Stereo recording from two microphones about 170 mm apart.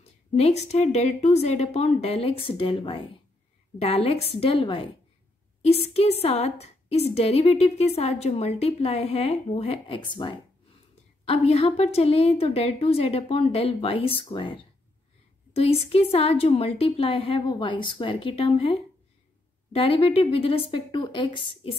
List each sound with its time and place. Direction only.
0.4 s a woman's voice: 40° left (ahead or behind)